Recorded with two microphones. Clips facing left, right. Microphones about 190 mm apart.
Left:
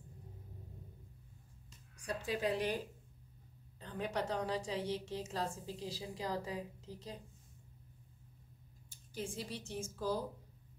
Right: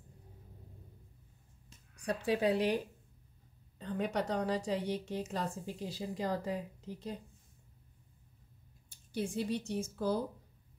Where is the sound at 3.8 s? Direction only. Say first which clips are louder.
Right 4 dB; 60° right (ahead or behind).